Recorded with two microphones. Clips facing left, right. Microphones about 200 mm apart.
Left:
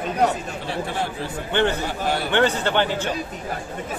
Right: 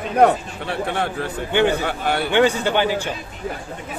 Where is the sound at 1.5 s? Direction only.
10° right (ahead or behind).